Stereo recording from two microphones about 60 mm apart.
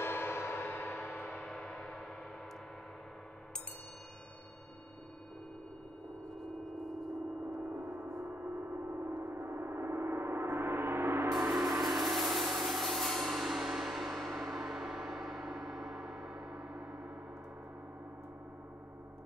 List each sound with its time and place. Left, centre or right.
0.0 s gong: left
1.2 s gong: centre
7.5 s gong: right
11.3 s a sound: centre
16.4 s gong: centre